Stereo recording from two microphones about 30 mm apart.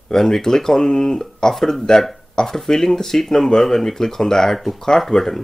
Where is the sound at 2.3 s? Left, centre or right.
Centre.